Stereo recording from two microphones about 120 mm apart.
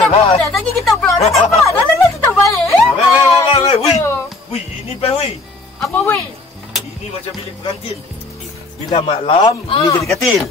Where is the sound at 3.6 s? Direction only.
60° left (ahead or behind).